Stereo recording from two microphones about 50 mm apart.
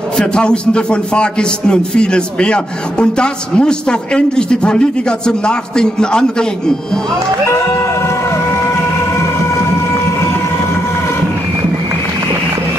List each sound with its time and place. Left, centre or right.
0.3 s a man's voice: centre